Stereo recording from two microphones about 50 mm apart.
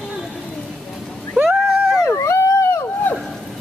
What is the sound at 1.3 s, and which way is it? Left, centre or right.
Vehicle, centre.